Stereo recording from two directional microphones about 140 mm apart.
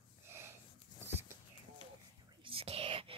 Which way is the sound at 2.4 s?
40° right (ahead or behind).